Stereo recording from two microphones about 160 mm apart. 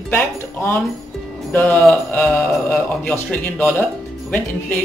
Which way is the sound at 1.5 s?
10° left (ahead or behind).